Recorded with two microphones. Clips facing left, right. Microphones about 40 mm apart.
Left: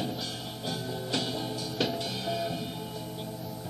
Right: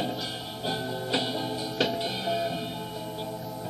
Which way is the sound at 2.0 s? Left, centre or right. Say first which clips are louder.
Right 4 dB; centre.